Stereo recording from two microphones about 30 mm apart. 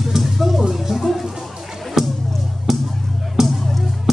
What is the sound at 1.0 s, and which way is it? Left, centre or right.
Music, centre.